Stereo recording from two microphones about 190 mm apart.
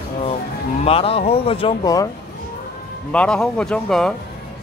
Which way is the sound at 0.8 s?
30° left (ahead or behind).